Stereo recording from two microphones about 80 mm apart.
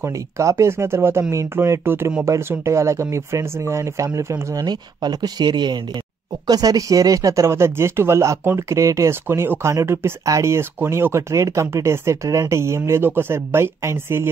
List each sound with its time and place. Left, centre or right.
0.0 s speech: right
4.6 s speech: right
6.4 s speech: right